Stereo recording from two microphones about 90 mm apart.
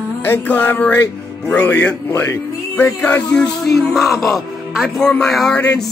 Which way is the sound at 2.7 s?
20° left (ahead or behind).